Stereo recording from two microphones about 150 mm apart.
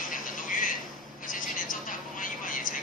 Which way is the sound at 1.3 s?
65° left (ahead or behind).